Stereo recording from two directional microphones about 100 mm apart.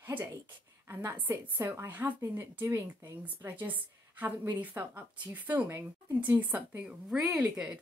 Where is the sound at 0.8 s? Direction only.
20° right (ahead or behind).